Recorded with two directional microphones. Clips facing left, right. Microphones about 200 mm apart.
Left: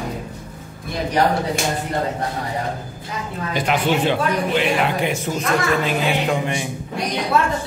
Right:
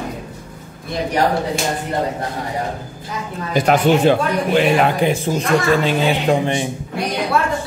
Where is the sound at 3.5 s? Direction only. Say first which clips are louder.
Right 6 dB; 45° right (ahead or behind).